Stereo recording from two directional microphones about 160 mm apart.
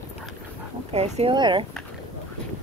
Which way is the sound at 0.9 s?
40° right (ahead or behind).